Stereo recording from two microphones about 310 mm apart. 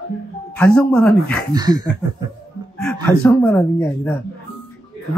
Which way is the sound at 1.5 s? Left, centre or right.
Centre.